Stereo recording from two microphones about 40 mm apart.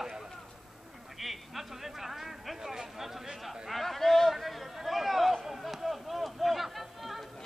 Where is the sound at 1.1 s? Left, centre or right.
Centre.